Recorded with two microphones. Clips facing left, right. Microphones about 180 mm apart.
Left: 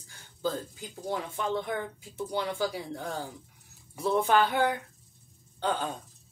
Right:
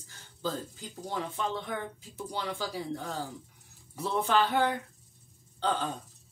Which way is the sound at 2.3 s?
55° left (ahead or behind).